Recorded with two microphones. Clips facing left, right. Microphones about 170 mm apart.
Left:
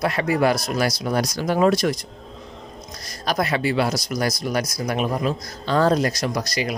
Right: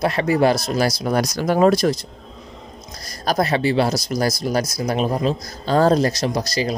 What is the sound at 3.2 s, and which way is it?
A man's voice, 35° right (ahead or behind).